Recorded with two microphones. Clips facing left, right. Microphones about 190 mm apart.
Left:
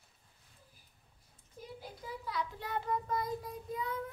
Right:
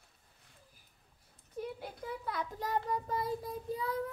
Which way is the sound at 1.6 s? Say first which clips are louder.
Right 6 dB; 60° right (ahead or behind).